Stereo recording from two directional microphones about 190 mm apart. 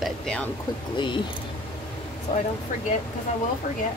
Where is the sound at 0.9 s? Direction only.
25° left (ahead or behind).